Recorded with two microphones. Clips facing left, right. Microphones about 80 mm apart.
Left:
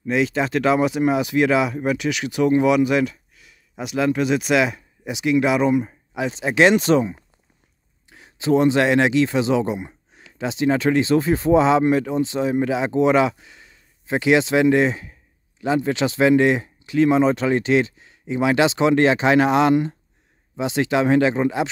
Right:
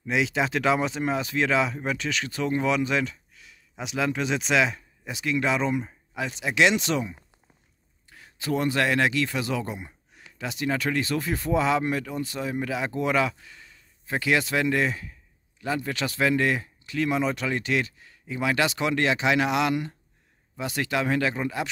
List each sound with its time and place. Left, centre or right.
0.0 s speech: centre
6.3 s speech: left
8.1 s speech: left